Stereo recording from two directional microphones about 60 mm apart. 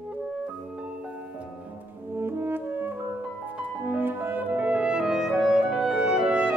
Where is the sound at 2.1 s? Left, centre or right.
Right.